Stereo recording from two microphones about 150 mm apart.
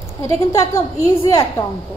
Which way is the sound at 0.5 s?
20° left (ahead or behind).